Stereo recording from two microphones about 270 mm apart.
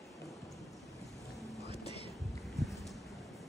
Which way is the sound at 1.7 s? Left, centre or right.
Left.